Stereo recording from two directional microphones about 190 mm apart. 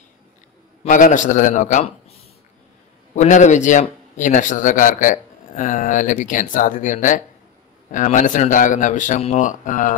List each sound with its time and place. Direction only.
0.8 s a man's voice: 45° left (ahead or behind)